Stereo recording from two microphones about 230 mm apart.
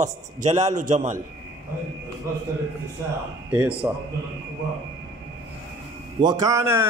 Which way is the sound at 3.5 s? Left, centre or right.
Centre.